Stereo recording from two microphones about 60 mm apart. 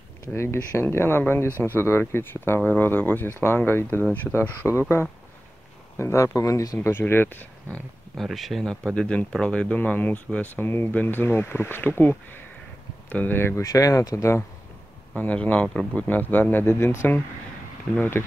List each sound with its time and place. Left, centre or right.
0.4 s speech: left
2.6 s speech: left
4.0 s speech: left
4.6 s speech: left
6.9 s speech: left
8.2 s speech: centre
8.9 s speech: centre
9.8 s speech: left
13.6 s speech: left
15.1 s speech: left